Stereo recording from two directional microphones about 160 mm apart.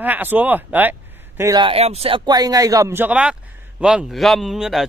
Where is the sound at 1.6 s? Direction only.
35° right (ahead or behind).